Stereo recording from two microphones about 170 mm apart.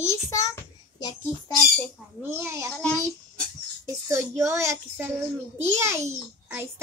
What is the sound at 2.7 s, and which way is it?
Speech, 5° left (ahead or behind).